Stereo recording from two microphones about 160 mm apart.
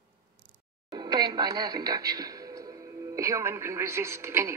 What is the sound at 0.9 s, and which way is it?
A woman's voice, 25° right (ahead or behind).